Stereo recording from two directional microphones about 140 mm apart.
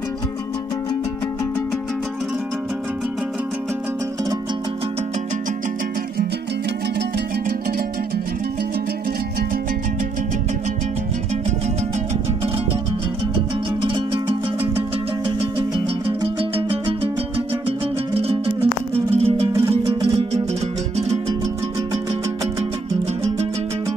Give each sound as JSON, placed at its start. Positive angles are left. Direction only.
{"t": 17.6, "sound": "music", "side_deg": -45}